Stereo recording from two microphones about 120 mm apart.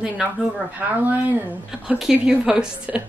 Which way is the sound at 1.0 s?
15° right (ahead or behind).